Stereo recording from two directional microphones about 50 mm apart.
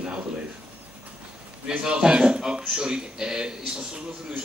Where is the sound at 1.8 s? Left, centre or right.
Centre.